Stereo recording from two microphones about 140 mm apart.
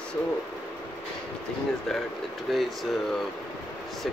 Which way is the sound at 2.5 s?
Centre (ahead or behind).